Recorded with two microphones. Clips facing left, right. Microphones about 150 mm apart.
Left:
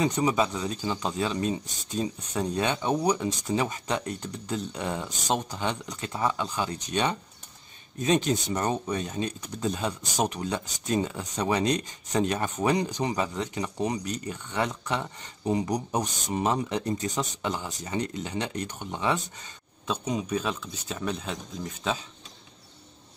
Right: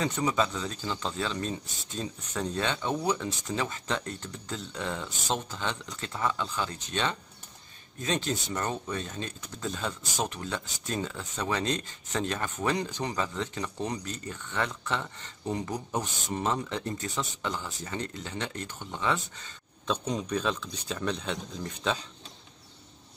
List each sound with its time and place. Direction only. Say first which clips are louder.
0.0 s speech: left 3 dB; 15° left (ahead or behind)